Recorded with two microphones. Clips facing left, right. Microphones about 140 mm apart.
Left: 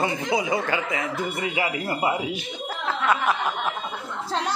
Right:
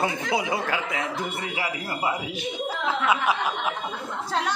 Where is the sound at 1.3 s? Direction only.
10° left (ahead or behind).